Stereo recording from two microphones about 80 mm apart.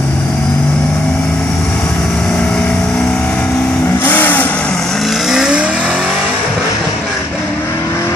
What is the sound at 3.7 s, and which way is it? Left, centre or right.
Vehicle, left.